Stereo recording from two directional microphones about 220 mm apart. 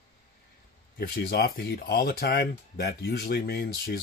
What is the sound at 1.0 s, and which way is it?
Speech, 45° left (ahead or behind).